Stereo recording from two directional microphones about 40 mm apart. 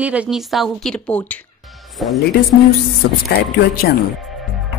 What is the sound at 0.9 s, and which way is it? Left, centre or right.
Speech, left.